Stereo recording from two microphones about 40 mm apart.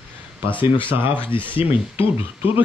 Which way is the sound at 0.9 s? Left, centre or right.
Right.